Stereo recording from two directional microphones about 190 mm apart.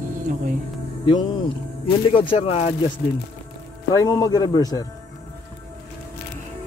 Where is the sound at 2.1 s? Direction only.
25° left (ahead or behind).